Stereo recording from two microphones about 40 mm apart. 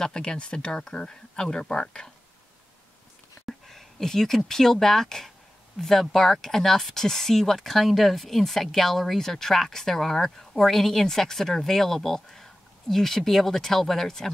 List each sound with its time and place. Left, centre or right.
0.0 s speech: centre
3.4 s speech: centre